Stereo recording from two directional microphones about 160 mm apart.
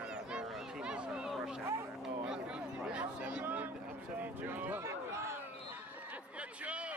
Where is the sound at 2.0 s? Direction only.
5° right (ahead or behind).